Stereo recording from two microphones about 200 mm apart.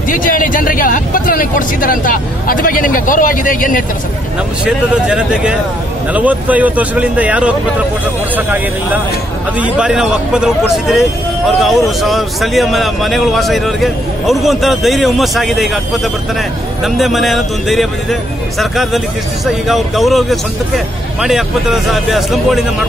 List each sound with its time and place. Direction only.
0.1 s speech: 45° left (ahead or behind)
4.6 s a man's voice: 5° right (ahead or behind)